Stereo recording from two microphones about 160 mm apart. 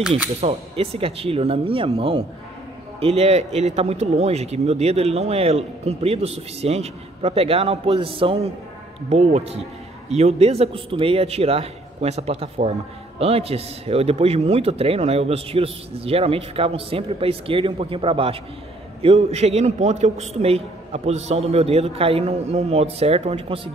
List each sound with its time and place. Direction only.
0.4 s speech: 40° right (ahead or behind)